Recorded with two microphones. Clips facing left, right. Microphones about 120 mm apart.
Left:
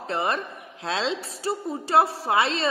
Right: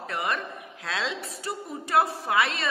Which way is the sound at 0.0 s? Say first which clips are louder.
Left 4 dB; 30° left (ahead or behind).